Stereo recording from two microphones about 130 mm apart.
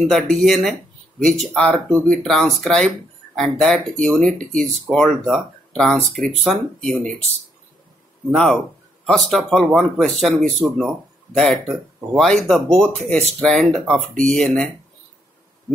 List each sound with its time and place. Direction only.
0.1 s speech: centre (ahead or behind)
8.3 s speech: 5° left (ahead or behind)